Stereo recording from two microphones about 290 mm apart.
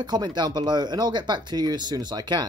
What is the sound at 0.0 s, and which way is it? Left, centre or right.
Speech, centre.